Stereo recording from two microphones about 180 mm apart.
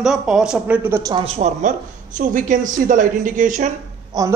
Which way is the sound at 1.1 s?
35° right (ahead or behind).